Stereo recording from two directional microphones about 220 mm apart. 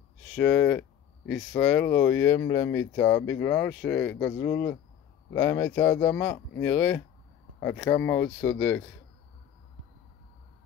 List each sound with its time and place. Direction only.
0.3 s speech: 5° left (ahead or behind)